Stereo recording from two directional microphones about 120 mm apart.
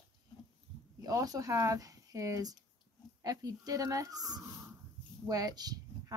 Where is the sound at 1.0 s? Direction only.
30° right (ahead or behind).